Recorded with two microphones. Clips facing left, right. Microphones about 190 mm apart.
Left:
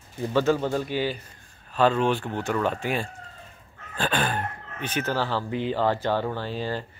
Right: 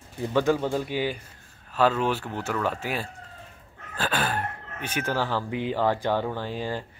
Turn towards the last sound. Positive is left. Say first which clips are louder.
# left 1 dB
turn(degrees=-15)  # may be behind; listen again after turning